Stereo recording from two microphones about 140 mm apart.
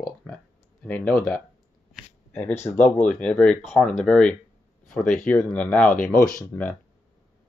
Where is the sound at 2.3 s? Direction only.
15° left (ahead or behind).